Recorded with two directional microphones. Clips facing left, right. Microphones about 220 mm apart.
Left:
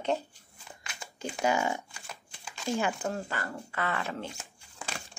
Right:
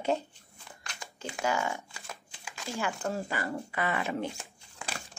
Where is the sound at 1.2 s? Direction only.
15° left (ahead or behind).